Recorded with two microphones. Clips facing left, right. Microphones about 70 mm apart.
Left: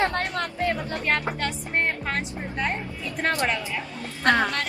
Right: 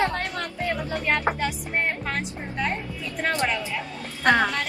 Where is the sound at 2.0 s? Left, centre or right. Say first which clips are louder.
Left 1 dB; centre.